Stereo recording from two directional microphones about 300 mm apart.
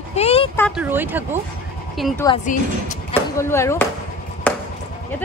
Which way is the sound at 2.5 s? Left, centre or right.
Left.